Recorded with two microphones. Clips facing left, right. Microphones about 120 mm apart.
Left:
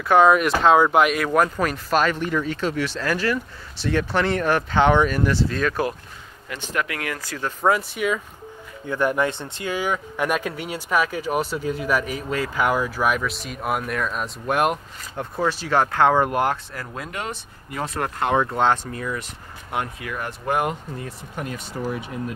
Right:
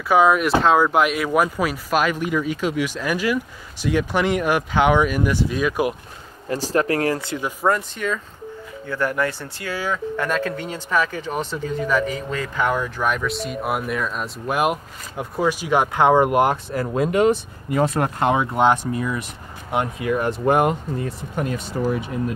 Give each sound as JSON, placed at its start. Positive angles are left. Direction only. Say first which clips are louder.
{"t": 0.1, "sound": "speech", "louder": "even", "side_deg": -5}
{"t": 6.5, "sound": "speech", "louder": "right 7 dB", "side_deg": -35}
{"t": 7.6, "sound": "speech", "louder": "left 1 dB", "side_deg": 5}
{"t": 21.0, "sound": "speech", "louder": "right 6 dB", "side_deg": -40}